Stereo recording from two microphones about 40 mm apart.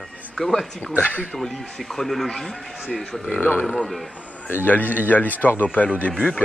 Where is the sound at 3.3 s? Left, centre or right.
Left.